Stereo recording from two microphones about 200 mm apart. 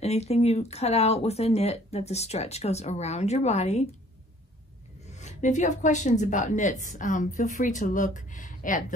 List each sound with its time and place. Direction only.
0.0 s speech: 30° left (ahead or behind)
5.1 s speech: 35° left (ahead or behind)